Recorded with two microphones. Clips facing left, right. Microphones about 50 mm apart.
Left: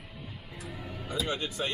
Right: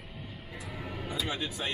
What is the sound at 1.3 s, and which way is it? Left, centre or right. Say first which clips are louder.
Speech: left 2 dB; centre.